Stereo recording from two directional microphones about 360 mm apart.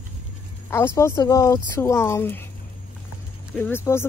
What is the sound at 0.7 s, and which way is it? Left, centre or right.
Speech, centre.